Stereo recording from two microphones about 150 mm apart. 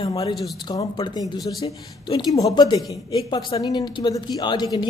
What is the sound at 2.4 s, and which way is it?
Speech, 25° left (ahead or behind).